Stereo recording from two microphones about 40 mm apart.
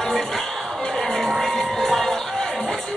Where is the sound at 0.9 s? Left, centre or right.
Centre.